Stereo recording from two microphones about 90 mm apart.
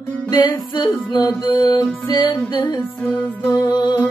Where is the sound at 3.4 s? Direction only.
50° left (ahead or behind).